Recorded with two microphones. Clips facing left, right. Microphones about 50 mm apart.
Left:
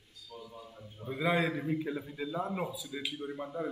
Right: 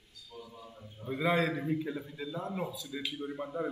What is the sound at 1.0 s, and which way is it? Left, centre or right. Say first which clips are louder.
A man's voice: right 1 dB; centre.